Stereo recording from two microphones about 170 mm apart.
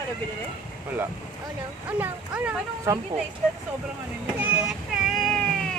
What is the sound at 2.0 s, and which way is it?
Speech, 15° right (ahead or behind).